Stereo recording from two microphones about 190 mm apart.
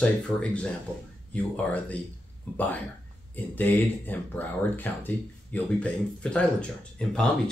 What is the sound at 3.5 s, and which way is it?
Speech, 10° left (ahead or behind).